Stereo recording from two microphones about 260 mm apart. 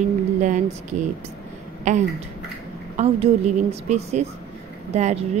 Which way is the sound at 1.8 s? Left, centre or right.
Right.